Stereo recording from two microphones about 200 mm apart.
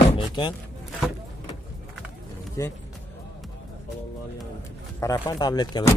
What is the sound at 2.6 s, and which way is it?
Speech, 15° left (ahead or behind).